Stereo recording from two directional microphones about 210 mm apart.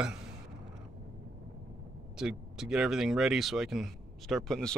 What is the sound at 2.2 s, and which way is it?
Speech, 5° right (ahead or behind).